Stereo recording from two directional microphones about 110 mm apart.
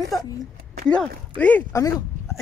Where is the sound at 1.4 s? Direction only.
15° left (ahead or behind).